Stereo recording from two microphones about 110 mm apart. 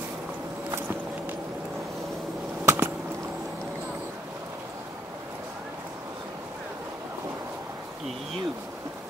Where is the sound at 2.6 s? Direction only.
25° right (ahead or behind).